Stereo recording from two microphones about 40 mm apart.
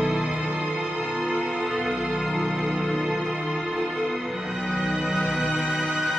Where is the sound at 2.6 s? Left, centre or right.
Right.